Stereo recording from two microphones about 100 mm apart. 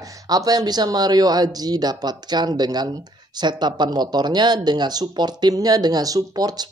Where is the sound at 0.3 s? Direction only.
40° right (ahead or behind).